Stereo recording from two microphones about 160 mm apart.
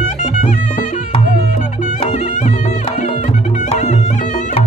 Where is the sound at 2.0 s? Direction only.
45° left (ahead or behind).